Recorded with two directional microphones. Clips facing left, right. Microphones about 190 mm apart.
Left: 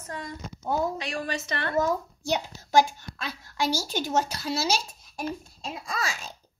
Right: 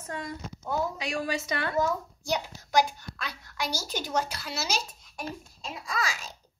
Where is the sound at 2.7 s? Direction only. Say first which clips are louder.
Left 3 dB; 25° left (ahead or behind).